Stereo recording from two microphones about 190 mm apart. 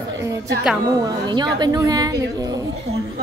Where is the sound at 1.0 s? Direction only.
20° right (ahead or behind).